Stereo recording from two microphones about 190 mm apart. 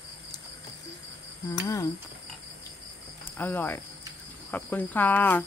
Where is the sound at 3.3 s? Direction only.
10° left (ahead or behind).